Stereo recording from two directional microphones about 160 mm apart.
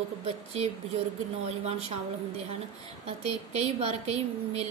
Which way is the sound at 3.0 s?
40° right (ahead or behind).